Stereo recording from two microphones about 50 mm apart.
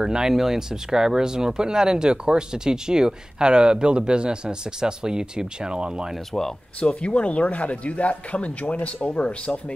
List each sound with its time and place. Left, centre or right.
0.0 s speech: centre
6.8 s speech: left